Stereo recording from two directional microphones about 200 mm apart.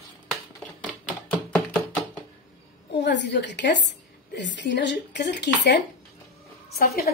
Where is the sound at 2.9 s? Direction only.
60° left (ahead or behind).